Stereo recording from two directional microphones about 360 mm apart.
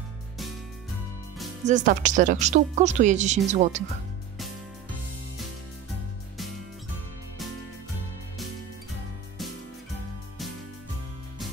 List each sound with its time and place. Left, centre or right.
1.7 s a woman's voice: right